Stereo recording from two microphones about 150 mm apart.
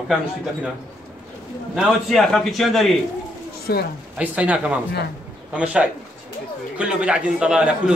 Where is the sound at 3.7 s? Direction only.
90° left.